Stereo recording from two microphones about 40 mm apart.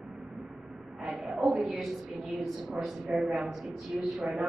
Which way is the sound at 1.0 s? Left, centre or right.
Centre.